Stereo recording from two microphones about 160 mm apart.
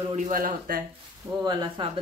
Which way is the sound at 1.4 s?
30° right (ahead or behind).